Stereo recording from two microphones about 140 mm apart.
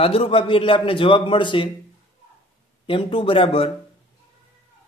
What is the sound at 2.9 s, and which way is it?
Speech, 40° left (ahead or behind).